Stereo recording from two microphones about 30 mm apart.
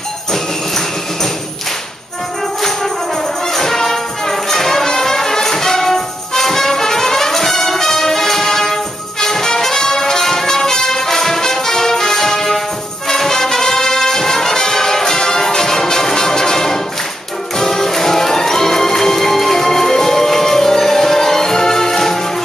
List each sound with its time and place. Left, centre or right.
0.3 s music: centre
3.5 s music: centre
9.2 s brass instrument: centre
17.6 s music: centre